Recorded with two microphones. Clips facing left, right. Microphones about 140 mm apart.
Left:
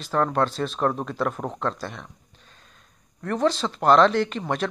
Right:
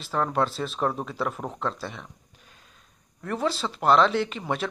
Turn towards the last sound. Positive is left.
turn(degrees=-5)  # may be behind; listen again after turning